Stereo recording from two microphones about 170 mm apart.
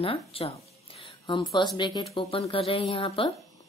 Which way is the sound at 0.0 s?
35° left (ahead or behind).